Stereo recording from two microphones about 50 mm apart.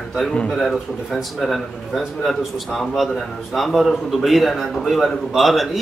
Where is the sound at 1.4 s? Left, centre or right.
Centre.